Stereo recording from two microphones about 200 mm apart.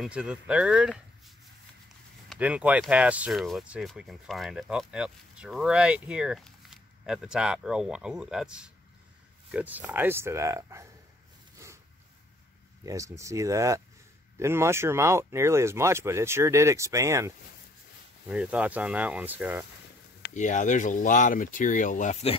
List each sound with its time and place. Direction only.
0.0 s speech: 5° right (ahead or behind)
11.5 s a sound: 15° right (ahead or behind)
12.8 s speech: 15° right (ahead or behind)
18.3 s speech: 5° right (ahead or behind)
20.3 s speech: 40° left (ahead or behind)